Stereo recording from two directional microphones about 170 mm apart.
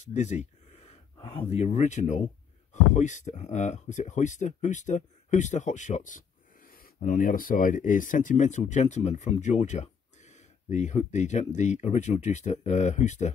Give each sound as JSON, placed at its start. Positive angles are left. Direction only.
{"t": 0.0, "sound": "speech", "side_deg": 45}